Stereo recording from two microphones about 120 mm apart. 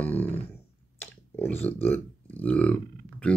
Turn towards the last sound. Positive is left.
turn(degrees=10)  # may be behind; listen again after turning